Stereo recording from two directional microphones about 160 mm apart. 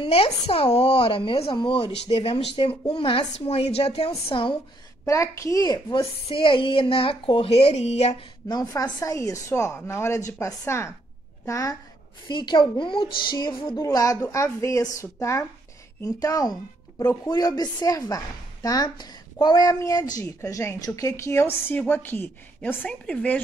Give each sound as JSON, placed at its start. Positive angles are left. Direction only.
{"t": 0.0, "sound": "a woman's voice", "side_deg": 35}
{"t": 5.0, "sound": "a woman's voice", "side_deg": 20}
{"t": 8.5, "sound": "a woman's voice", "side_deg": 25}